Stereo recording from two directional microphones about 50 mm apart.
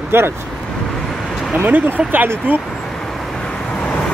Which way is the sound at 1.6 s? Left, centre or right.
Right.